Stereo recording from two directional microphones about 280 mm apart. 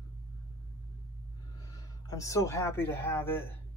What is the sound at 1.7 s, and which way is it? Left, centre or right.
Speech, centre.